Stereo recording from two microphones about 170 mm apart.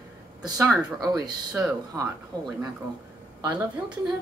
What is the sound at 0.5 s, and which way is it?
Speech, centre (ahead or behind).